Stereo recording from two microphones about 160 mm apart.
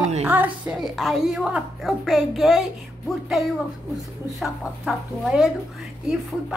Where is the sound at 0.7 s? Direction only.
Centre (ahead or behind).